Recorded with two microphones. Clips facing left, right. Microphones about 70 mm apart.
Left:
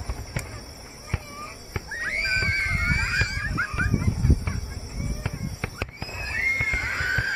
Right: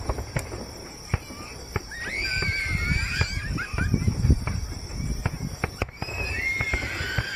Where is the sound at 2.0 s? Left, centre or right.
Left.